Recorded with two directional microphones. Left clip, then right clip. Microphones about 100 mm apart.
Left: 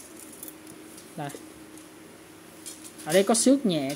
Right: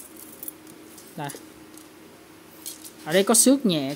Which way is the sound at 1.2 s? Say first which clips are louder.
Right 2 dB; 15° right (ahead or behind).